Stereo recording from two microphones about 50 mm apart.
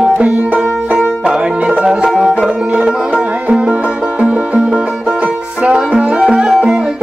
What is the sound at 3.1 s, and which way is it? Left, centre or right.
Music, right.